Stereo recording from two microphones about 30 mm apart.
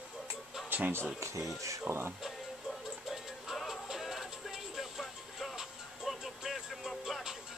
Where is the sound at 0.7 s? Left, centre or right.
Right.